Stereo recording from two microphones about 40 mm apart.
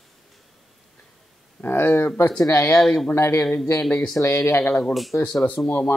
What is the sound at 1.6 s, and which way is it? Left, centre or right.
Speech, left.